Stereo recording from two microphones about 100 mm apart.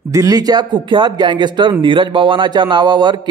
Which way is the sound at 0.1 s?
35° right (ahead or behind).